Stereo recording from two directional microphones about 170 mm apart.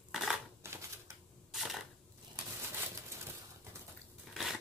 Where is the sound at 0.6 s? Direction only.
15° right (ahead or behind).